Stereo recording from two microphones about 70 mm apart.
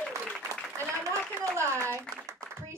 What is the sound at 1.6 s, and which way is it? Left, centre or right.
Speech, right.